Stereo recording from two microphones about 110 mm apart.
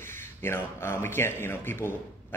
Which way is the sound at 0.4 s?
20° left (ahead or behind).